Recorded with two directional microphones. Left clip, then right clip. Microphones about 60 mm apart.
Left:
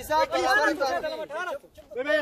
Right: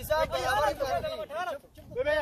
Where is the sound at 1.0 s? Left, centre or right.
Left.